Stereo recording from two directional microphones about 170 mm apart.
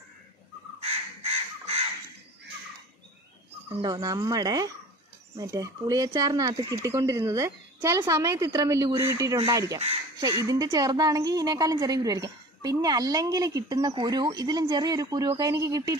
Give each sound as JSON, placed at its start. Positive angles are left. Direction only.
{"t": 0.7, "sound": "crow", "side_deg": -35}
{"t": 3.7, "sound": "speech", "side_deg": -20}